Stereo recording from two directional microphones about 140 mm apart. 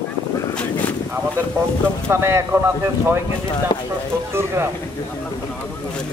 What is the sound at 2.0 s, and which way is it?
Speech, 20° right (ahead or behind).